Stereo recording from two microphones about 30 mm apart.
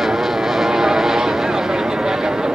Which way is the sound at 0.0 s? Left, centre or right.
Centre.